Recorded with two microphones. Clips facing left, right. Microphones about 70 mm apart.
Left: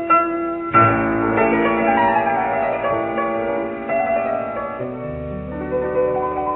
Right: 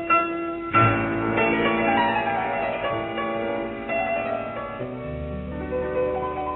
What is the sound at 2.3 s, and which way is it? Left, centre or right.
Music, centre.